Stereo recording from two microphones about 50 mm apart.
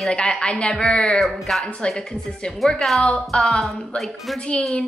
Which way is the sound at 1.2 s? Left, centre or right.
Centre.